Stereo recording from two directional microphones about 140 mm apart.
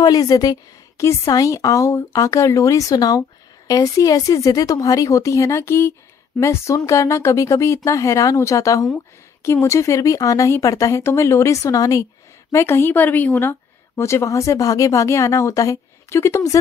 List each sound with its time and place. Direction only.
0.0 s speech: 25° left (ahead or behind)